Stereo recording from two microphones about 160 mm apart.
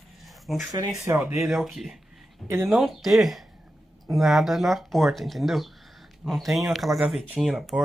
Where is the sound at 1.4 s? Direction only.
Centre (ahead or behind).